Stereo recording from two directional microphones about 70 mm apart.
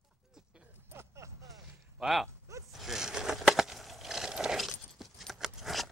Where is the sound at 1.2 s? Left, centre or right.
Right.